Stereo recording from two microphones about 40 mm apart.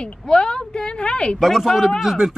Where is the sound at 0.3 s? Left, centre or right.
Left.